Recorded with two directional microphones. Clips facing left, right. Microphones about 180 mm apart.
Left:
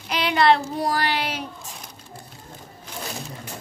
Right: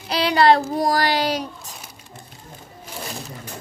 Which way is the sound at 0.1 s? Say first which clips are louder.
Right 3 dB; 35° right (ahead or behind).